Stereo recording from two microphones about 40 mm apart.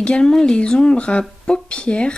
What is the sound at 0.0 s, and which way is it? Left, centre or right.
Speech, left.